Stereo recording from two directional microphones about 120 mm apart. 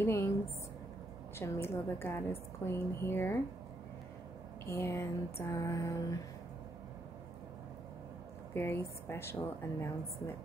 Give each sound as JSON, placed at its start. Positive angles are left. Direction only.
{"t": 0.0, "sound": "speech", "side_deg": 20}
{"t": 1.4, "sound": "speech", "side_deg": 20}
{"t": 4.6, "sound": "speech", "side_deg": 20}
{"t": 8.5, "sound": "speech", "side_deg": 20}